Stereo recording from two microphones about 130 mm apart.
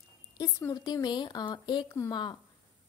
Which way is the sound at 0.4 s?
25° left (ahead or behind).